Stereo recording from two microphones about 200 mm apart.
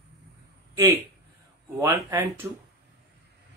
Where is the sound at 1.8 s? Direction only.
15° right (ahead or behind).